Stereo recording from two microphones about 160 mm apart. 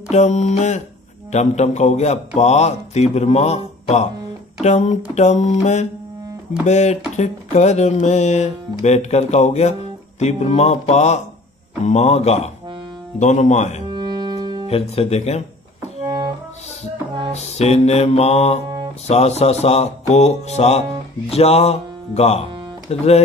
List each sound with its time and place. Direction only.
0.1 s mantra: 45° left (ahead or behind)
13.8 s music: 25° right (ahead or behind)
14.7 s speech: 40° left (ahead or behind)
17.4 s speech: 40° left (ahead or behind)